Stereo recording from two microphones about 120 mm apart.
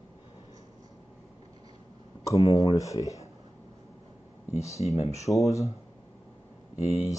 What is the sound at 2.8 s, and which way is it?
Speech, 30° left (ahead or behind).